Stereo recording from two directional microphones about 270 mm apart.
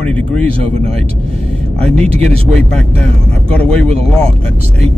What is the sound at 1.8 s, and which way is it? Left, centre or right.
Speech, centre.